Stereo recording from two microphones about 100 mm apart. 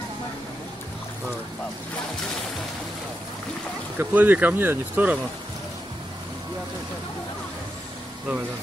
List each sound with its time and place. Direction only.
4.0 s speech: 20° right (ahead or behind)